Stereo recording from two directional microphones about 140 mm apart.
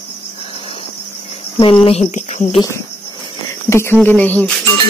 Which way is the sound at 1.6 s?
40° left (ahead or behind).